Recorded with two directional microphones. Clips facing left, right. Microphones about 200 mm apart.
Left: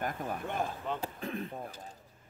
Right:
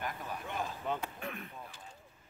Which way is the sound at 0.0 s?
50° left (ahead or behind).